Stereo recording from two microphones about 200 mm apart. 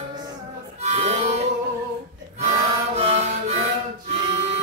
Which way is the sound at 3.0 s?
30° right (ahead or behind).